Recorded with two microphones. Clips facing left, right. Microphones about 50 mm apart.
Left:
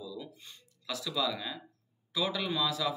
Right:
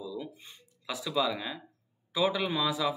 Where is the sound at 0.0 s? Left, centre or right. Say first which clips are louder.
Right 4 dB; right.